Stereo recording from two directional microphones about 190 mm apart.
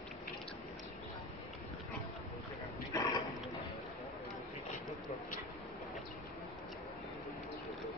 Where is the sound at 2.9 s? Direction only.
20° left (ahead or behind).